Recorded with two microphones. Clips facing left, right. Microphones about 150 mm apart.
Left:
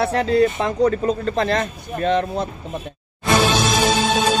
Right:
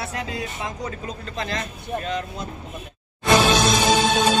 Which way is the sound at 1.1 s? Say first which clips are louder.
Left 10 dB; 40° left (ahead or behind).